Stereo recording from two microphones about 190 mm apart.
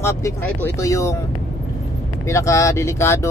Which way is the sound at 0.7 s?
15° left (ahead or behind).